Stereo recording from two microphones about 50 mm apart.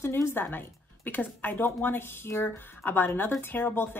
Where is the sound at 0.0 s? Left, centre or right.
Left.